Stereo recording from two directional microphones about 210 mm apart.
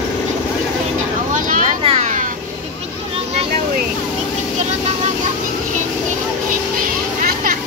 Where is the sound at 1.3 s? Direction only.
30° right (ahead or behind).